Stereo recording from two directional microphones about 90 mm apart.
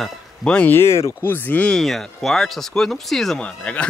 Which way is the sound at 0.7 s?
30° left (ahead or behind).